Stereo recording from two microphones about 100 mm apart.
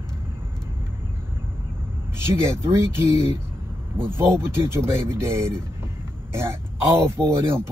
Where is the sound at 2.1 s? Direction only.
25° right (ahead or behind).